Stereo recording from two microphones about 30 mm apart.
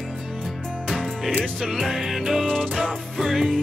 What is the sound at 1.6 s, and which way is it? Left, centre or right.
Music, centre.